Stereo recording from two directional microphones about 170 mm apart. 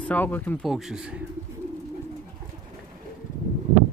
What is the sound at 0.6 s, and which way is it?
Speech, centre (ahead or behind).